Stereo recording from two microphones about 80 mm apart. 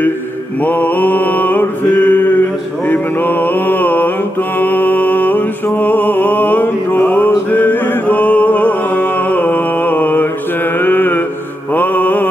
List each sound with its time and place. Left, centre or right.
0.6 s mantra: left
4.6 s music: left
11.7 s mantra: left